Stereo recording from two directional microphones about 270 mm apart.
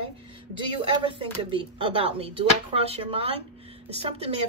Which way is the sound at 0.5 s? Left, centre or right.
Centre.